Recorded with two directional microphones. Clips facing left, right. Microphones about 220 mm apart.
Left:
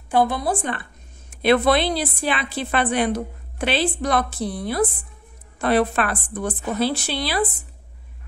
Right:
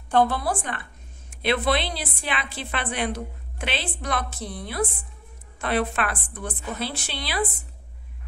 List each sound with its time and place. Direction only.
0.1 s a woman's voice: 15° left (ahead or behind)
1.4 s a woman's voice: 45° left (ahead or behind)